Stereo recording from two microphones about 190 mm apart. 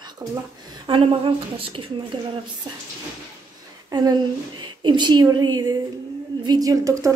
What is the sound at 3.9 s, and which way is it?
A woman's voice, 20° right (ahead or behind).